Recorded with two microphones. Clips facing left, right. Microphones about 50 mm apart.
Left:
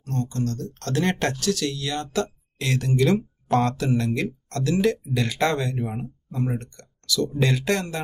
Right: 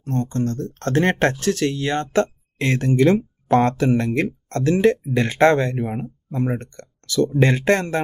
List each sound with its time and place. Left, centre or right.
0.0 s speech: right